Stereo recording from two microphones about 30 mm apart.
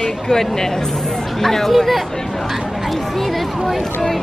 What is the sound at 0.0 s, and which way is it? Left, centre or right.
Speech, centre.